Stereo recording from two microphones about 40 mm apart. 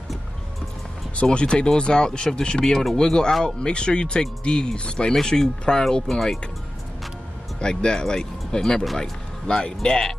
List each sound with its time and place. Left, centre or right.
1.3 s speech: left
5.1 s speech: centre
7.6 s speech: centre